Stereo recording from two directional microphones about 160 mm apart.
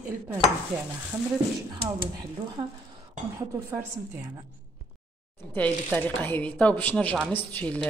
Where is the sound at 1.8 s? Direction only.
35° right (ahead or behind).